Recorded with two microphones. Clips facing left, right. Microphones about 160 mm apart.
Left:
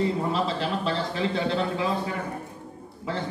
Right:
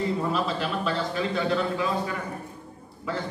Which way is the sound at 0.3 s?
30° left (ahead or behind).